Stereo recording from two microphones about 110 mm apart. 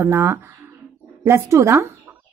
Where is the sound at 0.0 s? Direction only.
20° right (ahead or behind).